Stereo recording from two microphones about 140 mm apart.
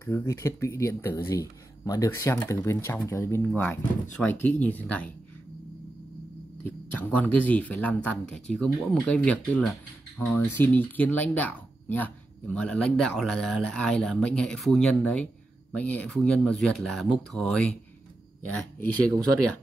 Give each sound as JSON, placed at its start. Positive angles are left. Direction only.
{"t": 0.0, "sound": "speech", "side_deg": 20}
{"t": 7.0, "sound": "speech", "side_deg": 10}